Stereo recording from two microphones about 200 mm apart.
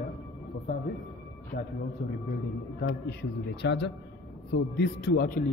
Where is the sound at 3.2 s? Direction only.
60° left (ahead or behind).